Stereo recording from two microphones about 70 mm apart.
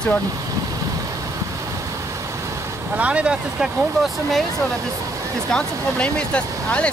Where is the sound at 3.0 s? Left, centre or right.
Centre.